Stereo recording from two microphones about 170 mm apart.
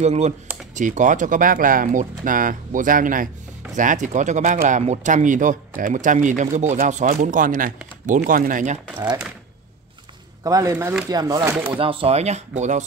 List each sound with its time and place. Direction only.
0.0 s speech: 40° right (ahead or behind)
10.4 s speech: 20° right (ahead or behind)
11.7 s speech: 30° right (ahead or behind)